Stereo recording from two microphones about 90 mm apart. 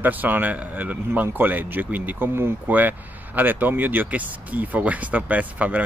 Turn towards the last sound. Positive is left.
turn(degrees=-15)  # may be behind; listen again after turning